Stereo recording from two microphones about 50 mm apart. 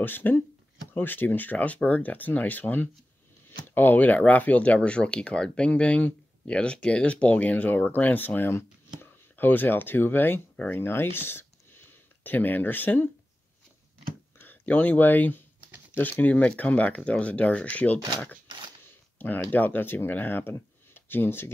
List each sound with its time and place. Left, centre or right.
0.0 s speech: left
14.4 s speech: left
19.1 s speech: left